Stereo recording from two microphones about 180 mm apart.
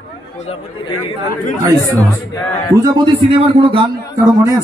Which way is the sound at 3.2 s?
30° right (ahead or behind).